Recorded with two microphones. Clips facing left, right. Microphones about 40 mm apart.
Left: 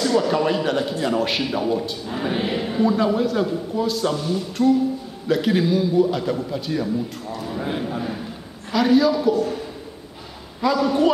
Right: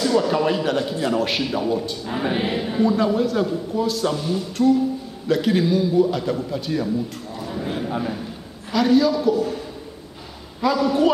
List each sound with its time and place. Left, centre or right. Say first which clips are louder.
0.0 s a man's voice: even; centre
2.0 s choir: right 4 dB; right
2.3 s a man's voice: left 1 dB; centre
7.5 s a man's voice: right 1 dB; centre
10.6 s a man's voice: even; centre